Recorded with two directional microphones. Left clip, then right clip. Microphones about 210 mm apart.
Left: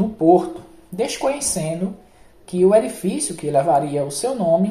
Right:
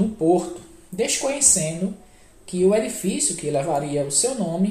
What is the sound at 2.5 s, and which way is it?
Speech, 20° left (ahead or behind).